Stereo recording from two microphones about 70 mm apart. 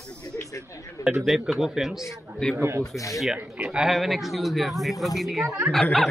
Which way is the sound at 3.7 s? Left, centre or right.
Centre.